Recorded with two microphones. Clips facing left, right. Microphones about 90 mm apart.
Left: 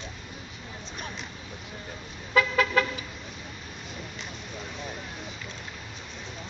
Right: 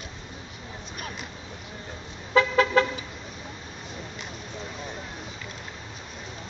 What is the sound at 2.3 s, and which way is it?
Vehicle, 25° right (ahead or behind).